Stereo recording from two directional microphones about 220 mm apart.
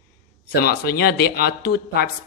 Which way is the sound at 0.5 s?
45° left (ahead or behind).